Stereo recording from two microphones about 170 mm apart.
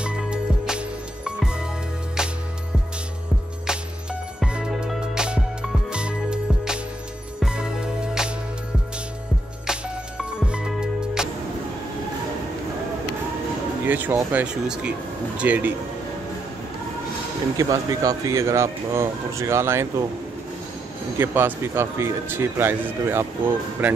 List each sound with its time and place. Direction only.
0.0 s music: 5° right (ahead or behind)
3.6 s music: 5° right (ahead or behind)
9.7 s music: 5° right (ahead or behind)
13.8 s speech: 10° right (ahead or behind)
17.6 s speech: 20° right (ahead or behind)
21.2 s speech: 15° right (ahead or behind)